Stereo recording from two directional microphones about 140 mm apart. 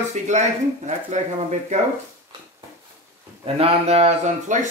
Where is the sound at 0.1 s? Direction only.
55° right (ahead or behind).